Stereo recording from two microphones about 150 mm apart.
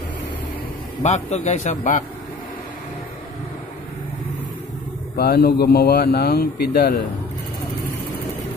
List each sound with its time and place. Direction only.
1.0 s a man's voice: 50° left (ahead or behind)
5.1 s a man's voice: 90° left